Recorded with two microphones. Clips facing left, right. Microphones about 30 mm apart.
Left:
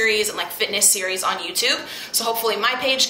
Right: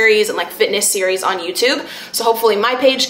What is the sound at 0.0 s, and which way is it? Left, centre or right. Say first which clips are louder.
A woman's voice: right 7 dB; centre.